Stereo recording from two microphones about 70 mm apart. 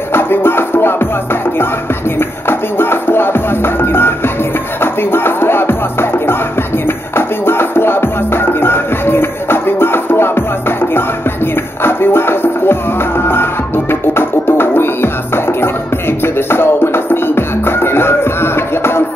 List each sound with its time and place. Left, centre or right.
0.1 s music: left
11.8 s music: left